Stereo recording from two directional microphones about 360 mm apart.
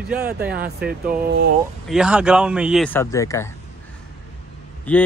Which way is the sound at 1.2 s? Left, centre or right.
Right.